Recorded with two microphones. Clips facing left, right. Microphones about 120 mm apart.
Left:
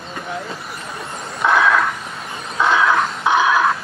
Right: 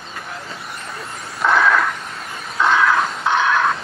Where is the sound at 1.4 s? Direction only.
Centre (ahead or behind).